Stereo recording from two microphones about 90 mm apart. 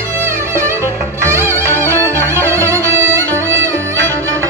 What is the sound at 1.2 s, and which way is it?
Music, 30° right (ahead or behind).